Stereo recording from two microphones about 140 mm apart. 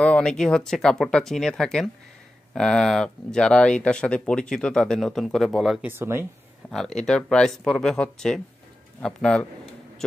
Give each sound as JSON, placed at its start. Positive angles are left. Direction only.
{"t": 0.0, "sound": "speech", "side_deg": 5}
{"t": 5.9, "sound": "speech", "side_deg": -15}
{"t": 6.7, "sound": "speech", "side_deg": 5}